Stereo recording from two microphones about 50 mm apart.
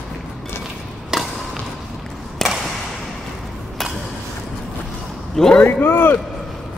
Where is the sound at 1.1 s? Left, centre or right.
Centre.